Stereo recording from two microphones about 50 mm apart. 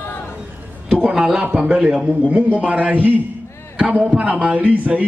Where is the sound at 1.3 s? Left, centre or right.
Right.